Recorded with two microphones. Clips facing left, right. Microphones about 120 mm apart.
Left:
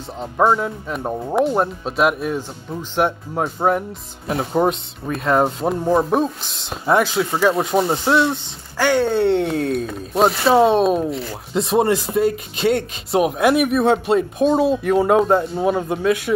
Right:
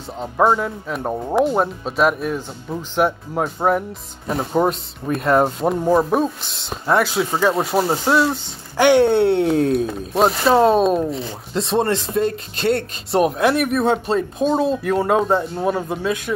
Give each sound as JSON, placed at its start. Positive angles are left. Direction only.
{"t": 0.2, "sound": "speech", "side_deg": 0}
{"t": 8.7, "sound": "speech", "side_deg": -15}
{"t": 9.2, "sound": "speech", "side_deg": 0}